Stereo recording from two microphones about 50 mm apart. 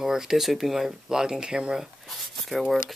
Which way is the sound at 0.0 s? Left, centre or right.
Centre.